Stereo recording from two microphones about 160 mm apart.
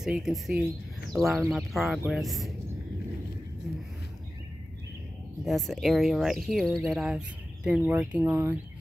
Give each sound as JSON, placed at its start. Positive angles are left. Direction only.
{"t": 0.0, "sound": "speech", "side_deg": 0}
{"t": 5.4, "sound": "speech", "side_deg": 0}